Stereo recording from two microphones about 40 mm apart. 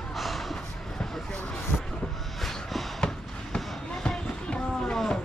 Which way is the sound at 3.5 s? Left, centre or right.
Centre.